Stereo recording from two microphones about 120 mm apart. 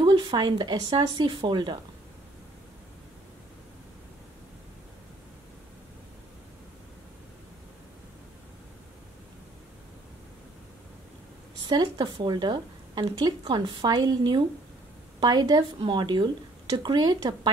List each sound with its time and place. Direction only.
0.0 s speech: 40° right (ahead or behind)
11.7 s speech: 40° right (ahead or behind)